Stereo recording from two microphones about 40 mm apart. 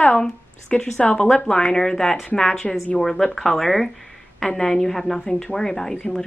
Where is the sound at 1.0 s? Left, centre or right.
Left.